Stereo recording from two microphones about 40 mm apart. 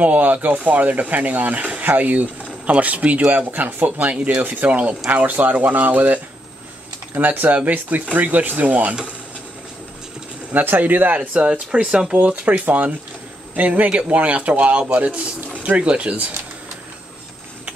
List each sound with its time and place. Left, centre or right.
0.0 s speech: right
4.0 s speech: right
4.4 s speech: right
10.5 s speech: right
11.1 s speech: right
12.1 s speech: right